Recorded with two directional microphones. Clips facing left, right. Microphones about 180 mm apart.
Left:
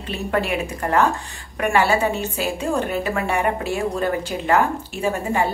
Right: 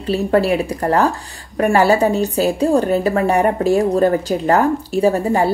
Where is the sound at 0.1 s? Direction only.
35° right (ahead or behind).